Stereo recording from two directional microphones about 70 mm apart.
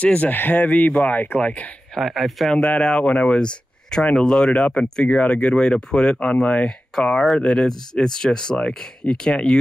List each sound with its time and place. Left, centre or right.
0.0 s speech: left
2.0 s speech: centre
2.5 s speech: centre